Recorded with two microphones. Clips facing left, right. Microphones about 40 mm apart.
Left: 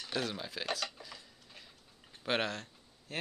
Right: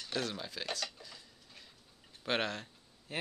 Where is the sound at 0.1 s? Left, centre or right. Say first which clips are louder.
Left 1 dB; centre.